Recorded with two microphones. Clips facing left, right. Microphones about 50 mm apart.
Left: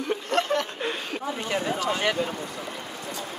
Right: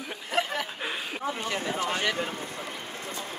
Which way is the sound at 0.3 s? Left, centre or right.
Centre.